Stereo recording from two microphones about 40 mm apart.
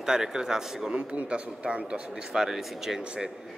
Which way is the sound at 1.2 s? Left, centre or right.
Right.